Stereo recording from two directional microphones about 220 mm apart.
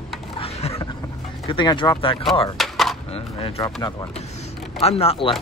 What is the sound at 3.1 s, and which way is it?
Speech, 25° left (ahead or behind).